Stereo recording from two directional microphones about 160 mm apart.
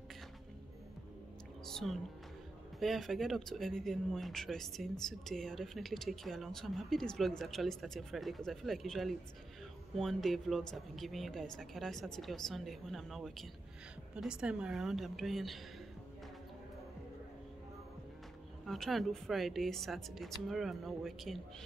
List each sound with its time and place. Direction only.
1.7 s a woman's voice: 5° left (ahead or behind)
18.7 s speech: centre (ahead or behind)